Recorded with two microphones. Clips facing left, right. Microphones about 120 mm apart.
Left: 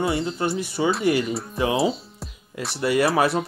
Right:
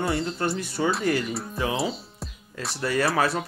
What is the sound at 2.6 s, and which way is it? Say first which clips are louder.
Speech: left 4 dB; 10° left (ahead or behind).